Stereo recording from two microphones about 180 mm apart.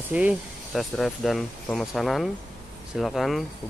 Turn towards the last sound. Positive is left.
turn(degrees=0)  # may be behind; listen again after turning